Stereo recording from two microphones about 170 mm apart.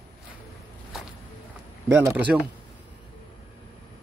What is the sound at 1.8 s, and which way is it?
Speech, 15° right (ahead or behind).